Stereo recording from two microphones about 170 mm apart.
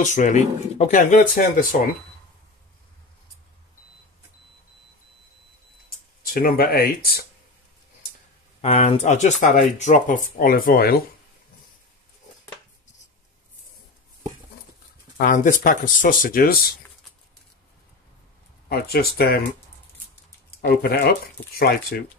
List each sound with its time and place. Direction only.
0.0 s speech: 45° left (ahead or behind)
6.2 s speech: 60° left (ahead or behind)
8.5 s speech: 40° left (ahead or behind); by 11.0 s 60° left (ahead or behind)
15.1 s speech: 50° left (ahead or behind)
18.7 s speech: 65° left (ahead or behind)
20.6 s speech: 65° left (ahead or behind)